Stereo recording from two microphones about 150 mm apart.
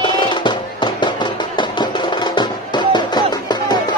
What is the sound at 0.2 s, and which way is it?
Music, 30° left (ahead or behind).